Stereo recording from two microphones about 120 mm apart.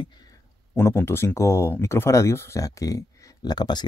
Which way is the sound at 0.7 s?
20° left (ahead or behind).